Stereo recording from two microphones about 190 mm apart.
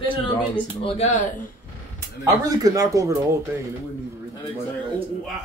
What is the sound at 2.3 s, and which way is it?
A man's voice, 15° right (ahead or behind).